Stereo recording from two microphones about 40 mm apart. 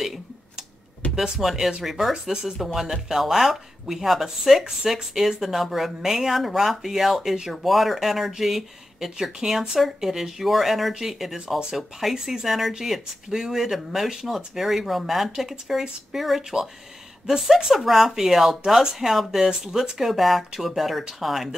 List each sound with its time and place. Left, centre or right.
1.1 s speech: centre
2.3 s speech: centre
2.6 s speech: centre